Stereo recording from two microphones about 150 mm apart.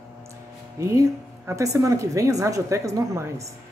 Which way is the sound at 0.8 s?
20° right (ahead or behind).